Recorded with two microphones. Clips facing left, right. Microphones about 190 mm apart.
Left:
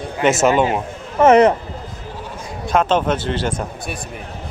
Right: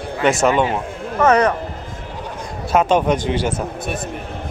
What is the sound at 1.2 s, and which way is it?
Speech, 25° left (ahead or behind).